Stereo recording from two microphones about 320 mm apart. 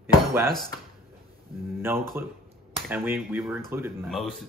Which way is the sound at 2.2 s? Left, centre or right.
Centre.